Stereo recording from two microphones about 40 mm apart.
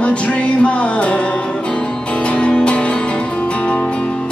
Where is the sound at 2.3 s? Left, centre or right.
Left.